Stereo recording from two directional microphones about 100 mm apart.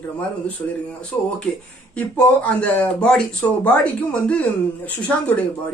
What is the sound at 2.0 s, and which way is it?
Speech, 15° left (ahead or behind).